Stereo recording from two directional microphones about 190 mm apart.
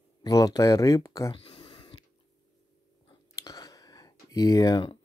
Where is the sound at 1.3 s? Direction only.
30° left (ahead or behind).